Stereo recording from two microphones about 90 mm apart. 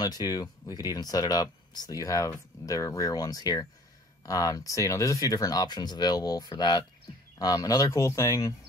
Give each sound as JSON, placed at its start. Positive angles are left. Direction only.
{"t": 0.0, "sound": "speech", "side_deg": 45}